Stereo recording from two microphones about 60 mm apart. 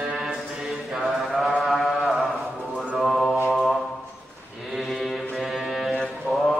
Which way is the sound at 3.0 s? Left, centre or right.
Centre.